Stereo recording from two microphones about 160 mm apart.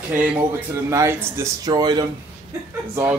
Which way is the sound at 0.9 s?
15° right (ahead or behind).